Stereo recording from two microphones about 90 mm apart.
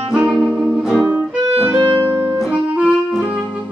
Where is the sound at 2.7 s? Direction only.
10° right (ahead or behind).